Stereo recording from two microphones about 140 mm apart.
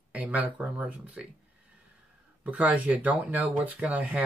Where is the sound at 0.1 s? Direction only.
10° right (ahead or behind).